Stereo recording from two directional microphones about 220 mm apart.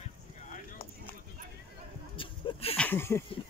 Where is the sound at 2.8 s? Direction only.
10° left (ahead or behind).